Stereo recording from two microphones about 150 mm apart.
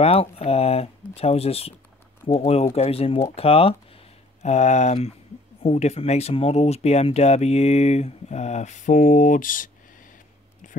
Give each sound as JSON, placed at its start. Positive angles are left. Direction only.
{"t": 0.0, "sound": "speech", "side_deg": 40}